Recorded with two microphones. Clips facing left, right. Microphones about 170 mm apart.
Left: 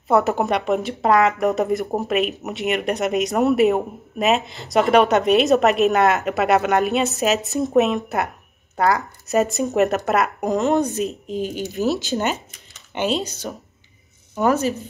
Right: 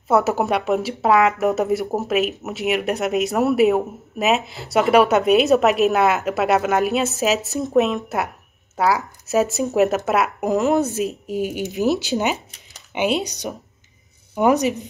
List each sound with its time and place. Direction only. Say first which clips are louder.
0.1 s speech: even; 5° right (ahead or behind)